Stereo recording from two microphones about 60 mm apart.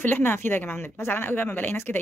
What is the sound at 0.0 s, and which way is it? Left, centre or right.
A woman's voice, left.